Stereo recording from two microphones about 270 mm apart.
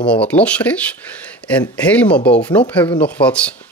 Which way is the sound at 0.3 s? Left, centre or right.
Centre.